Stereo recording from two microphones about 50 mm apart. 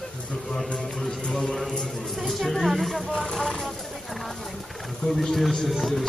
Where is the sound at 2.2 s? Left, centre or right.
Centre.